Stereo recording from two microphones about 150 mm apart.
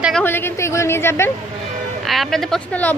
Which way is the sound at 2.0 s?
Centre (ahead or behind).